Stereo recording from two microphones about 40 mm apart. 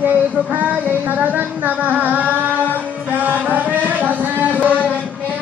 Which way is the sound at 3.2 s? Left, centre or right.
Right.